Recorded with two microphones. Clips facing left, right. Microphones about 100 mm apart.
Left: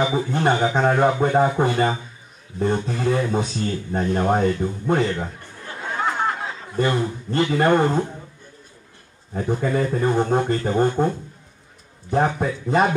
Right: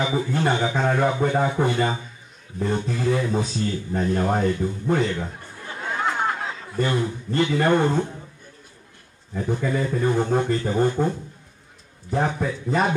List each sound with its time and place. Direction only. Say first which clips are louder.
0.0 s a man's voice: left 2 dB; 25° left (ahead or behind)
6.8 s speech: left 2 dB; 30° left (ahead or behind)
9.3 s speech: left 2 dB; 35° left (ahead or behind)
12.1 s speech: left 3 dB; 35° left (ahead or behind)